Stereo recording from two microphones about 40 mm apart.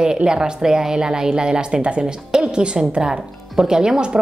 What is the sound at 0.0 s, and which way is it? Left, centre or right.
Speech, centre.